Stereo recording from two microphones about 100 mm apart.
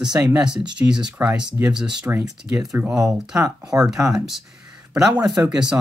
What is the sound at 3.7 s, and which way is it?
Speech, 30° right (ahead or behind).